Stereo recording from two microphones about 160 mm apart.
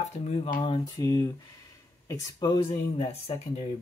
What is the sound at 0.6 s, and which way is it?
Speech, 35° left (ahead or behind).